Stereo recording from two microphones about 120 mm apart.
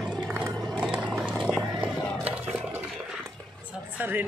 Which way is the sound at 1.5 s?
10° right (ahead or behind).